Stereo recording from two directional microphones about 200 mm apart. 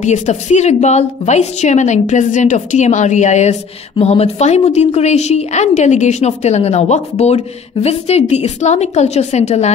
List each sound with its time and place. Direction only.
0.0 s a woman's voice: 35° left (ahead or behind)